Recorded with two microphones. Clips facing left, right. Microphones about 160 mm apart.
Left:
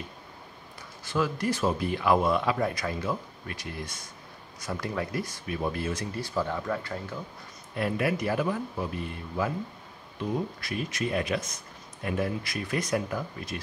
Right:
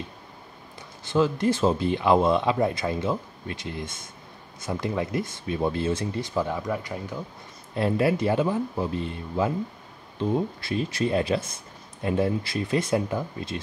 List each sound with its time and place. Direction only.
1.0 s speech: 25° right (ahead or behind)
7.7 s speech: 30° right (ahead or behind)